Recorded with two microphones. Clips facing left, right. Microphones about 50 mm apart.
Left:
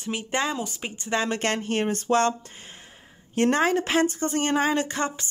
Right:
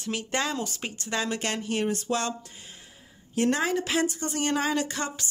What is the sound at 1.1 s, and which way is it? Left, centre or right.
Speech, left.